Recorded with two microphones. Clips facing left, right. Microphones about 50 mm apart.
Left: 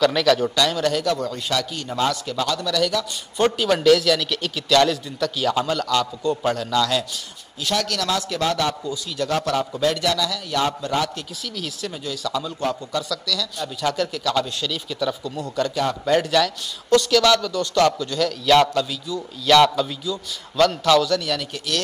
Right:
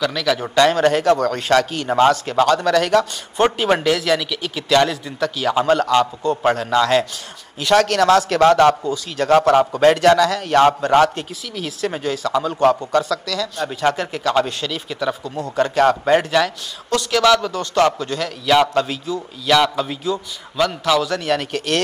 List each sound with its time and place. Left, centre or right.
0.0 s speech: centre
0.6 s a man's voice: right
1.1 s a man's voice: right
1.5 s a man's voice: right
3.3 s a man's voice: right
7.7 s a man's voice: right
11.5 s speech: right
11.9 s a man's voice: right
16.1 s a man's voice: right
19.4 s a man's voice: centre
19.7 s speech: right
20.5 s a man's voice: centre
21.0 s a man's voice: right